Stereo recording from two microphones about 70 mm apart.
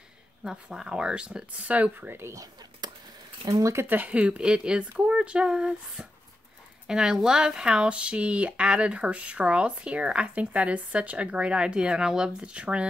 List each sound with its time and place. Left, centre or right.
0.4 s speech: centre; by 2.3 s right
2.8 s a sound: right
3.4 s speech: right
3.8 s speech: right